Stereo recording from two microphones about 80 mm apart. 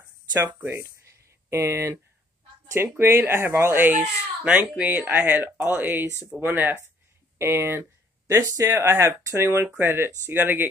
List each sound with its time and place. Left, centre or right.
0.3 s speech: right
0.6 s a sound: right
2.7 s speech: right
4.5 s speech: centre
7.3 s speech: right